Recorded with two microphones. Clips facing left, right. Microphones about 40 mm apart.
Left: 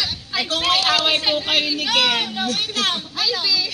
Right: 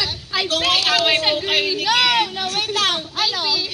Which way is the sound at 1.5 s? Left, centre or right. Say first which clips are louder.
Right 2 dB; right.